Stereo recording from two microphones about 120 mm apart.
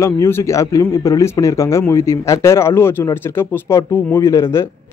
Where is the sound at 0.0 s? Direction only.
20° left (ahead or behind).